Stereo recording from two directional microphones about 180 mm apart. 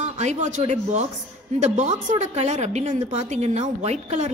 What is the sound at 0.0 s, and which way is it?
Speech, 40° right (ahead or behind).